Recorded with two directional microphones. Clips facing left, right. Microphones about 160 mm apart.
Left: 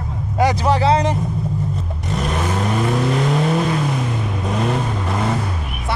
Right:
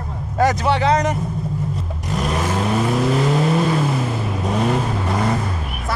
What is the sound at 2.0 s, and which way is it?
Vehicle, centre (ahead or behind).